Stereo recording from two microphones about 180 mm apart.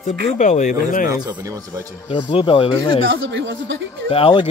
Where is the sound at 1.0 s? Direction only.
20° right (ahead or behind).